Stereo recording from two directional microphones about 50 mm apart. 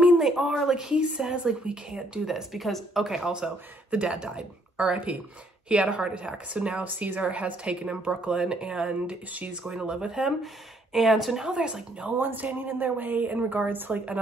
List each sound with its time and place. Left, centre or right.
0.2 s speech: centre
0.8 s speech: right
2.2 s speech: centre
4.1 s speech: centre
9.8 s speech: centre
11.5 s speech: right
12.2 s speech: right